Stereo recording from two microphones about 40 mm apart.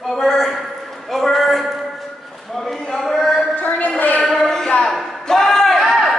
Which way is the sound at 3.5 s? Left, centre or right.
Left.